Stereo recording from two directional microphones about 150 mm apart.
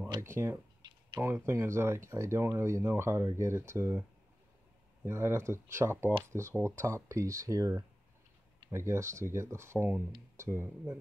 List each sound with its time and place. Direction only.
0.2 s speech: 15° right (ahead or behind)
5.0 s speech: 15° right (ahead or behind)